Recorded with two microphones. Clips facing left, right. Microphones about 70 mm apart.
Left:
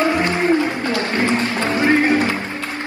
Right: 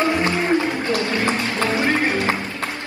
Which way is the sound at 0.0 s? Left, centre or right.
Right.